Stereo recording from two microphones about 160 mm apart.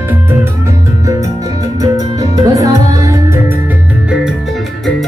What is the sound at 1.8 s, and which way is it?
Music, 20° right (ahead or behind).